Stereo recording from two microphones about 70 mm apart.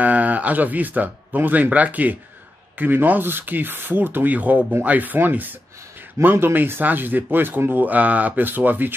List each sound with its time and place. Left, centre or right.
0.0 s speech: right